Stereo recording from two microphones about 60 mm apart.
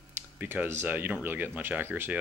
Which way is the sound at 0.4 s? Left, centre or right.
Right.